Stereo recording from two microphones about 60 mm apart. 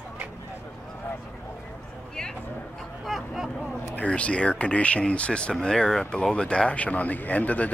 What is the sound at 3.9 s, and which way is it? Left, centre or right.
Speech, left.